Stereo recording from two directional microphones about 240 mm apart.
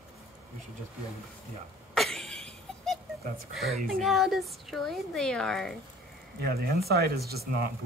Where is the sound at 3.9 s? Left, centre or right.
Centre.